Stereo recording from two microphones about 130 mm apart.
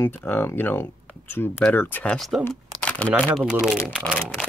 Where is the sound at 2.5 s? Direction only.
5° left (ahead or behind).